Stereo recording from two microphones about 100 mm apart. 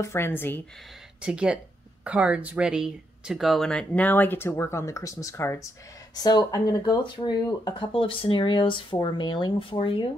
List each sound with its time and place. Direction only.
0.0 s speech: 25° left (ahead or behind)
1.2 s speech: 10° right (ahead or behind); by 5.7 s 25° left (ahead or behind)
6.1 s speech: 40° left (ahead or behind)
7.9 s speech: 60° left (ahead or behind)
9.6 s speech: 60° left (ahead or behind)